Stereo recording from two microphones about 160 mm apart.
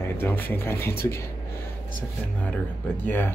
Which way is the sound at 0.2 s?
15° left (ahead or behind).